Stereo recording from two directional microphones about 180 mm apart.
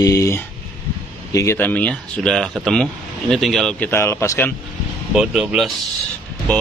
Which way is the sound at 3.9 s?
15° left (ahead or behind).